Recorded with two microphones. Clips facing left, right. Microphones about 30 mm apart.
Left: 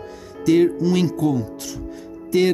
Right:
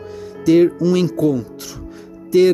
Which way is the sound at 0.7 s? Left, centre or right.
Centre.